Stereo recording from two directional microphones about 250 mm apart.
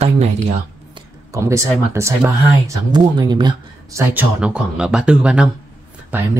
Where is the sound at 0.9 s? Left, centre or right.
Centre.